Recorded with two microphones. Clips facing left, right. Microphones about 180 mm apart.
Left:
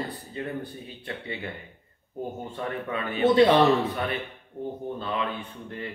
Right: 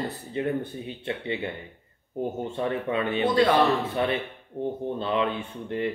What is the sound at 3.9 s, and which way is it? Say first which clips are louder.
Speech: right 4 dB; 25° right (ahead or behind).